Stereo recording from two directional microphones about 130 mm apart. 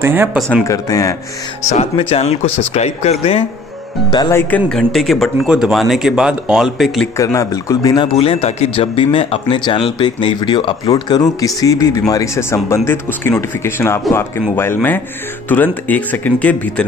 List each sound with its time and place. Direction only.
0.0 s speech: 15° right (ahead or behind)
0.7 s speech: 25° left (ahead or behind)
1.7 s speech: 50° left (ahead or behind)
4.3 s speech: 15° left (ahead or behind); by 6.9 s 5° right (ahead or behind)
7.2 s speech: 25° left (ahead or behind)
8.2 s speech: 50° left (ahead or behind); by 16.8 s 10° left (ahead or behind)